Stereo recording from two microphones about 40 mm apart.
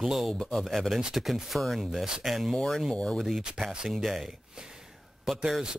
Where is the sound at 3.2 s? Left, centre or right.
Centre.